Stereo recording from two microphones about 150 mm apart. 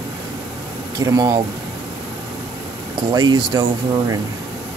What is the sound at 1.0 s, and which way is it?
Speech, 20° right (ahead or behind).